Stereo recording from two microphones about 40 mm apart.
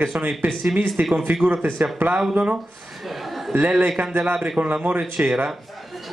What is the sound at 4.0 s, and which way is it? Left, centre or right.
Speech, right.